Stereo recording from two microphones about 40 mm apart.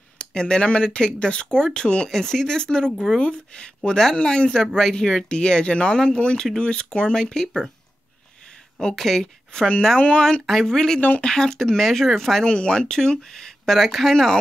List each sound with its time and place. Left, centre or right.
0.2 s speech: left
2.0 s speech: centre
8.9 s speech: centre
9.7 s speech: centre
9.9 s speech: left
10.4 s speech: centre
10.7 s speech: centre
11.0 s speech: left
11.2 s speech: centre
12.4 s speech: left
13.7 s speech: centre
14.1 s speech: centre